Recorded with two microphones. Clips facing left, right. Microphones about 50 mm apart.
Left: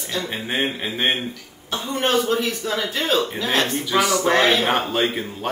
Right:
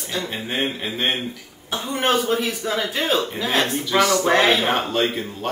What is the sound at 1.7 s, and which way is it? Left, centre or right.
Speech, centre.